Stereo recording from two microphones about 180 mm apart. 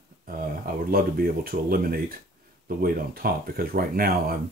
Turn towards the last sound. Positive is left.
turn(degrees=-55)  # may be behind; listen again after turning